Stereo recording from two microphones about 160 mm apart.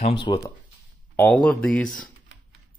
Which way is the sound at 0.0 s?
30° left (ahead or behind).